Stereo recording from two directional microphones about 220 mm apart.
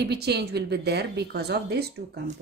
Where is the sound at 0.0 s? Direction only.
50° right (ahead or behind).